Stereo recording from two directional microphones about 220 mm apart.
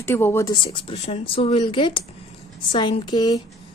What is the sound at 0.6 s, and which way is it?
Speech, 25° left (ahead or behind).